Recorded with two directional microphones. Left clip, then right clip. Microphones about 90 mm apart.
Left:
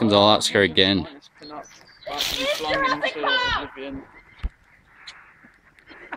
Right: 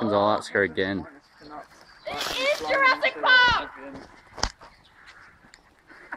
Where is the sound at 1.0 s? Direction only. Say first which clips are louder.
Left 6 dB; 55° left (ahead or behind).